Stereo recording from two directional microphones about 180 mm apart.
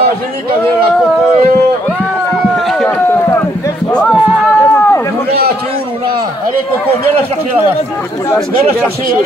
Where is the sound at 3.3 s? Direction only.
15° left (ahead or behind).